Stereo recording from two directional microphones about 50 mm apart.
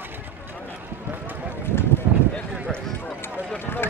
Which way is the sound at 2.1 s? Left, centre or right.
Right.